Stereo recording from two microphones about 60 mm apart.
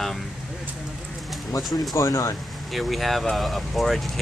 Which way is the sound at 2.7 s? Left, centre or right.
Centre.